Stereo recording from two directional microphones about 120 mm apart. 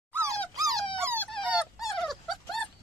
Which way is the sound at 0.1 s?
25° right (ahead or behind).